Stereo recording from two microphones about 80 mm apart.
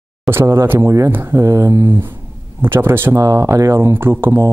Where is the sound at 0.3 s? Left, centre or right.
Right.